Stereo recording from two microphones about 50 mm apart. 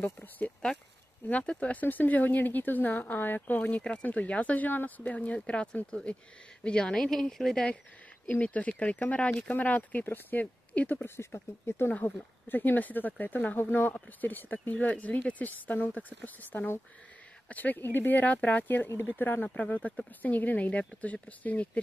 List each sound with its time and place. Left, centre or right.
0.0 s speech: left
1.3 s a woman's voice: left
8.3 s speech: left
10.4 s speech: left
11.1 s speech: left
11.9 s speech: left
19.4 s speech: left